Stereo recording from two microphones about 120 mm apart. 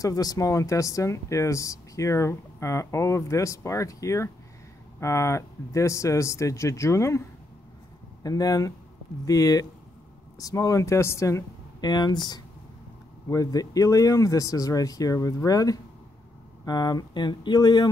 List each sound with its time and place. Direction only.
0.0 s speech: 30° left (ahead or behind)